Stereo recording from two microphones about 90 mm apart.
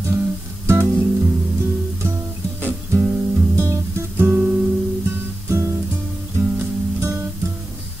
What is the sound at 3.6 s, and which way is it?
Guitar, 30° right (ahead or behind).